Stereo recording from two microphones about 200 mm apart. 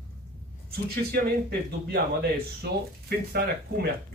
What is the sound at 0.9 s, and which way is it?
Speech, 50° right (ahead or behind).